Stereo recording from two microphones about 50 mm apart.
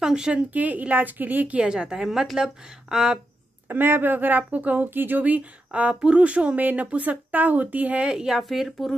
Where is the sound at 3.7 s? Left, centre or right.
Right.